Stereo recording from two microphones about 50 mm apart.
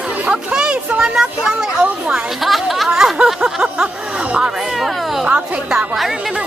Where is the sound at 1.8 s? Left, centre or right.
Centre.